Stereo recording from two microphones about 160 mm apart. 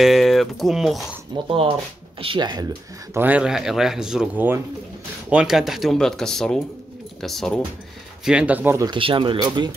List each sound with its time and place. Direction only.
0.0 s speech: centre (ahead or behind)
1.5 s speech: 35° right (ahead or behind)
3.2 s speech: 10° right (ahead or behind)
8.8 s speech: 30° right (ahead or behind)